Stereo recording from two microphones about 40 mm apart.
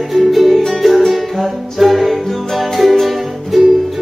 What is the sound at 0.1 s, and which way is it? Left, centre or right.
Music, centre.